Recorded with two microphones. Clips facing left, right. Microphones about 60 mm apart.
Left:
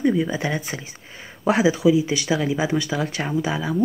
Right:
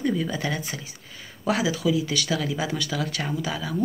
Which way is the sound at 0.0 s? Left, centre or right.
Centre.